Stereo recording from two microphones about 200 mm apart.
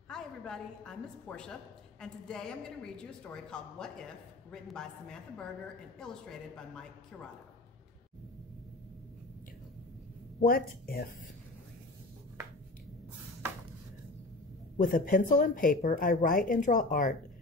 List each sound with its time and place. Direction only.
0.1 s a woman's voice: 5° left (ahead or behind)
10.4 s speech: 50° left (ahead or behind)
14.8 s speech: 45° left (ahead or behind)